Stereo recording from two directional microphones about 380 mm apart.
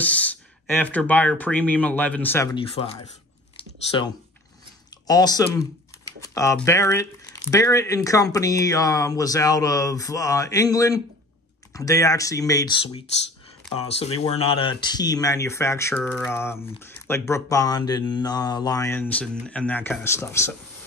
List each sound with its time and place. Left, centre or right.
0.0 s speech: centre
5.0 s speech: centre